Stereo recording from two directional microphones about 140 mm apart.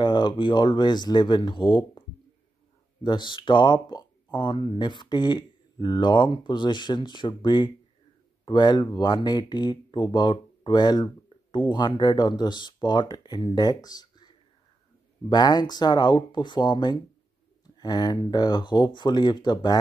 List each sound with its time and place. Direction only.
0.0 s speech: 30° left (ahead or behind)